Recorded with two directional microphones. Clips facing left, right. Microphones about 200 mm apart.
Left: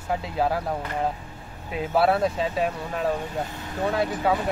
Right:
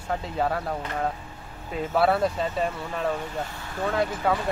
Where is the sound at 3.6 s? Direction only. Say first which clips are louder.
Left 3 dB; 20° left (ahead or behind).